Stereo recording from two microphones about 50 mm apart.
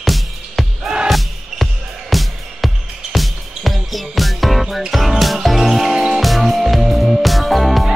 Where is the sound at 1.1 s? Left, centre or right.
Centre.